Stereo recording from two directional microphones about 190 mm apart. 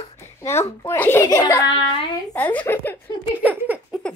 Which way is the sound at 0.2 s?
15° left (ahead or behind).